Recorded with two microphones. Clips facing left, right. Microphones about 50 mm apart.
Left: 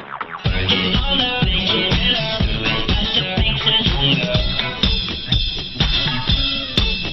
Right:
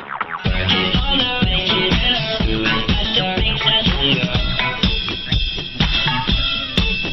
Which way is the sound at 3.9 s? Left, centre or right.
Right.